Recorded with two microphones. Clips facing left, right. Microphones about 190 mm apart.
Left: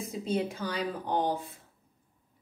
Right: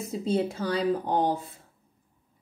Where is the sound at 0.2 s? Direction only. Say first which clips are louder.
Right 4 dB; 30° right (ahead or behind).